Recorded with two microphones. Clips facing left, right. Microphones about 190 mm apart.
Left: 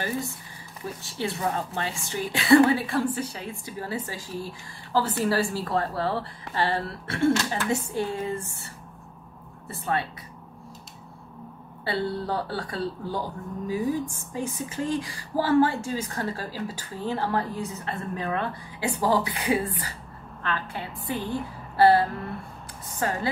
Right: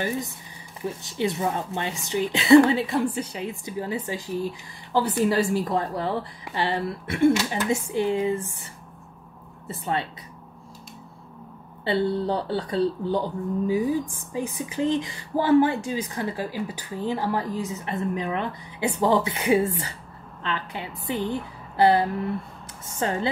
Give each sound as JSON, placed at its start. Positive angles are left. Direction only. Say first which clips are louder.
{"t": 1.0, "sound": "a woman's voice", "louder": "right 3 dB", "side_deg": -20}
{"t": 9.7, "sound": "a woman's voice", "louder": "right 1 dB", "side_deg": -20}
{"t": 11.8, "sound": "a woman's voice", "louder": "right 5 dB", "side_deg": -20}